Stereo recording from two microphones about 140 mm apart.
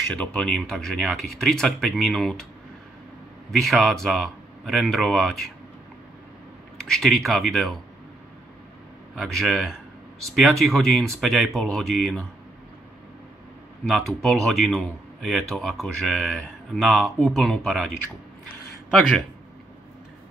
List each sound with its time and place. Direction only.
0.1 s speech: 5° left (ahead or behind)
3.5 s speech: centre (ahead or behind)
6.8 s speech: centre (ahead or behind)
9.1 s speech: centre (ahead or behind)
13.8 s speech: centre (ahead or behind)
18.9 s speech: centre (ahead or behind)